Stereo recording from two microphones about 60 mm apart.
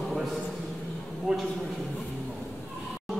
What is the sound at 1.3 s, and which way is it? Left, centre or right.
Speech, centre.